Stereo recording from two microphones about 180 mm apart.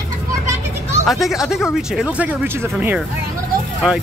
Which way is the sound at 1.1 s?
Centre (ahead or behind).